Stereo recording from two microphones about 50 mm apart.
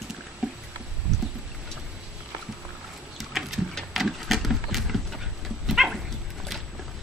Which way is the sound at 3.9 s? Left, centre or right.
Centre.